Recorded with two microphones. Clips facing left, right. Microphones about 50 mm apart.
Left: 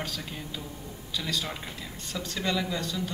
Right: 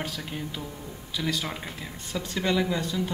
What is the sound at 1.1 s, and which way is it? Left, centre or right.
Speech, right.